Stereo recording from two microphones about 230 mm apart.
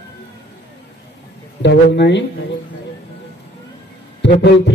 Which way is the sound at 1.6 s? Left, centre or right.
Left.